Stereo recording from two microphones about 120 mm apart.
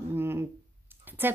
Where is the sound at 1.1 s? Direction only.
15° right (ahead or behind).